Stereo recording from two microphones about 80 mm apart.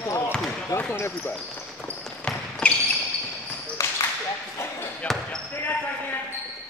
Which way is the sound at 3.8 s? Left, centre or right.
Left.